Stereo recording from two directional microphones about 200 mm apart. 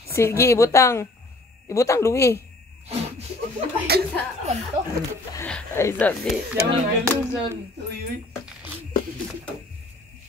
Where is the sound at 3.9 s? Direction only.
50° right (ahead or behind).